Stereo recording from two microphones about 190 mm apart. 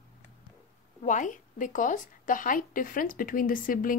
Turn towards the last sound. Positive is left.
turn(degrees=45)  # may be behind; listen again after turning